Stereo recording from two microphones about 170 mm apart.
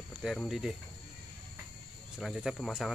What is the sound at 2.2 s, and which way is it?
Speech, centre (ahead or behind).